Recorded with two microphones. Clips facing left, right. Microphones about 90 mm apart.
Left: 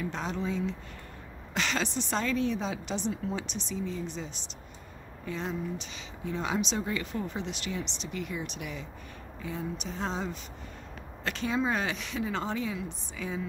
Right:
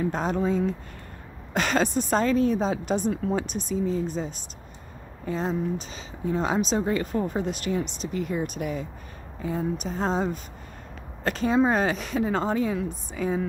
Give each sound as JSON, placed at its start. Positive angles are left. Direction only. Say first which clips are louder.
{"t": 0.0, "sound": "speech", "louder": "right 8 dB", "side_deg": -45}